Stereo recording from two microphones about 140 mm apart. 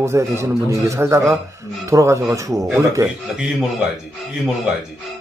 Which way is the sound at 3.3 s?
5° right (ahead or behind).